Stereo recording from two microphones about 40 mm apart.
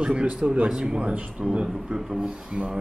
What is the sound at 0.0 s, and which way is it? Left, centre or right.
A man's voice, right.